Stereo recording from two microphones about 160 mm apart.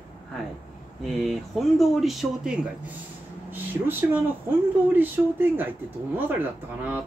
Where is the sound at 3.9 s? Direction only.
10° right (ahead or behind).